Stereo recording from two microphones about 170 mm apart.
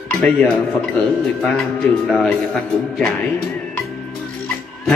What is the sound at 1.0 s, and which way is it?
Speech, 5° left (ahead or behind).